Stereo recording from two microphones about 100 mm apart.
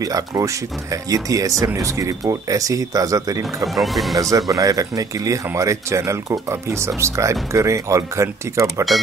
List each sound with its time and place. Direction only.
0.0 s speech: 35° right (ahead or behind)
3.6 s speech: centre (ahead or behind)
4.2 s speech: 35° right (ahead or behind)